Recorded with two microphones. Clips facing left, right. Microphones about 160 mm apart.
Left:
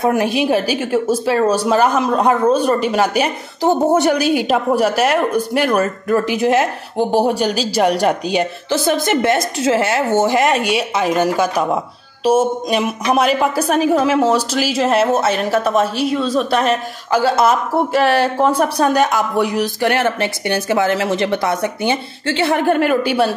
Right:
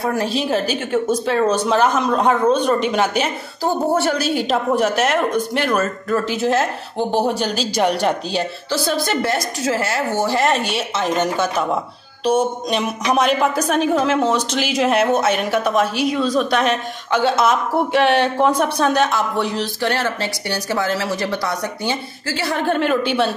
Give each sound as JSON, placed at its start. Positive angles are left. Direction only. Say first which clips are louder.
{"t": 0.0, "sound": "a woman's voice", "louder": "left 5 dB", "side_deg": 15}
{"t": 3.6, "sound": "a woman's voice", "louder": "left 5 dB", "side_deg": 20}
{"t": 22.6, "sound": "a woman's voice", "louder": "even", "side_deg": 10}